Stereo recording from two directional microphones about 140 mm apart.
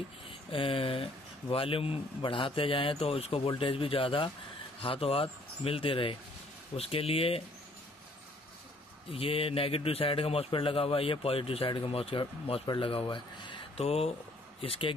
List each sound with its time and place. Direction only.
0.5 s a man's voice: 40° left (ahead or behind)
9.1 s a man's voice: 40° left (ahead or behind)